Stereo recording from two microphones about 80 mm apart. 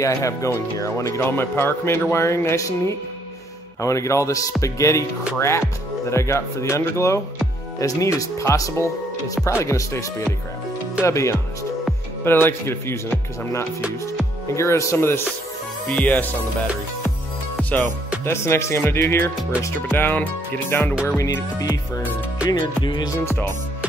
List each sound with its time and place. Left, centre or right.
0.0 s speech: left
11.1 s speech: left
15.9 s speech: left
17.6 s music: centre
18.2 s speech: left
21.3 s music: left